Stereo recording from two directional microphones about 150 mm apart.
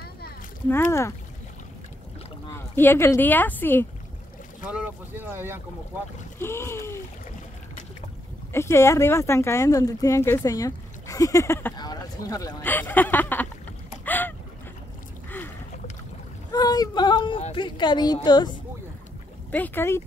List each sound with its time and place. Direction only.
0.7 s speech: 15° left (ahead or behind)
2.5 s speech: 15° left (ahead or behind)
4.6 s speech: 10° right (ahead or behind)
6.4 s speech: 15° left (ahead or behind)
8.5 s speech: 15° left (ahead or behind)
12.6 s speech: 10° left (ahead or behind)
14.0 s boat: 10° left (ahead or behind)
16.5 s speech: 25° left (ahead or behind)
19.5 s speech: 10° left (ahead or behind)